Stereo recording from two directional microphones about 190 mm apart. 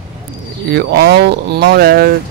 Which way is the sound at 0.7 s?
55° right (ahead or behind).